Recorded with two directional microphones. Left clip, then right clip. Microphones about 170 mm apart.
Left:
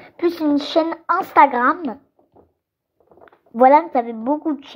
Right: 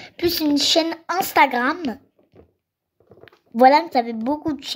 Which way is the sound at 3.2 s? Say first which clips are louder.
Left 1 dB; 25° right (ahead or behind).